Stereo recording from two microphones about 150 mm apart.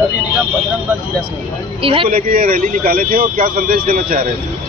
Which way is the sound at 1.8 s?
40° right (ahead or behind).